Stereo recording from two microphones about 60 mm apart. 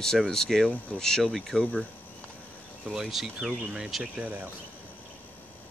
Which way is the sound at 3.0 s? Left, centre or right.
Centre.